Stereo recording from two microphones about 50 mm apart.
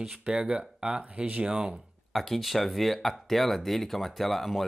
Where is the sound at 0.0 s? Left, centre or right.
Centre.